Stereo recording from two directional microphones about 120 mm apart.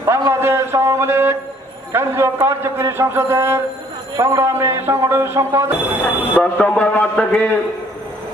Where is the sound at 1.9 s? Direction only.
20° right (ahead or behind).